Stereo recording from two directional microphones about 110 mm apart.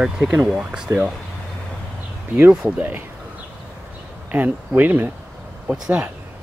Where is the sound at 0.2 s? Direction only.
15° right (ahead or behind).